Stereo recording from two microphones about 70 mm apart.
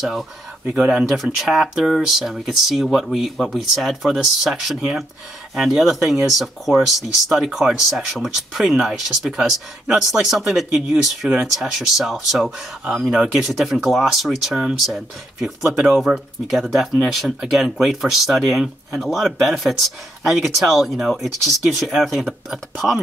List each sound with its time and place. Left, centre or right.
0.0 s speech: centre